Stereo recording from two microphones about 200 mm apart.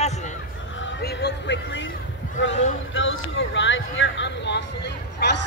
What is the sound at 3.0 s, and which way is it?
Speech, 70° left (ahead or behind).